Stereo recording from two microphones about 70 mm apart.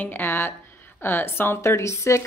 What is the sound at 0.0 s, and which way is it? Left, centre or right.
A woman's voice, left.